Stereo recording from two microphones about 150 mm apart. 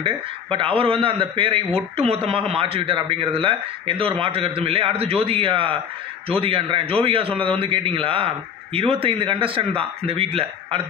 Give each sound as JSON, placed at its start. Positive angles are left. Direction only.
{"t": 0.0, "sound": "a man's voice", "side_deg": -35}